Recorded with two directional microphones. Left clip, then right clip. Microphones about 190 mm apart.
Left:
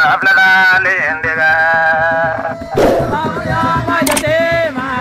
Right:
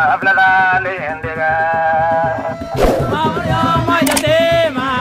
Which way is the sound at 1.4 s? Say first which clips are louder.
Left 3 dB; 35° left (ahead or behind).